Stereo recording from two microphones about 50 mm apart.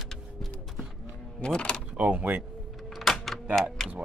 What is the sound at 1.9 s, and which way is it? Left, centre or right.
Speech, right.